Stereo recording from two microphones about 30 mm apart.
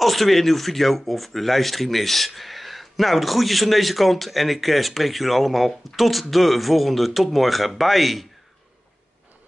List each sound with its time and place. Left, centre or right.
0.0 s speech: centre